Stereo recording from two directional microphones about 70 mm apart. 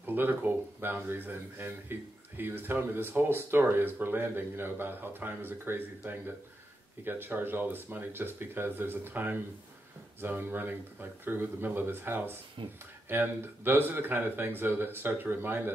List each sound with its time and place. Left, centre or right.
0.0 s speech: right